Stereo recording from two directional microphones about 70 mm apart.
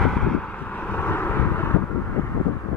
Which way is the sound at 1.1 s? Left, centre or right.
Left.